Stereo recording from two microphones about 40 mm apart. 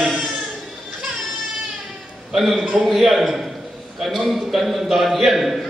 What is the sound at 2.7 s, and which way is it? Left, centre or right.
A man's voice, centre.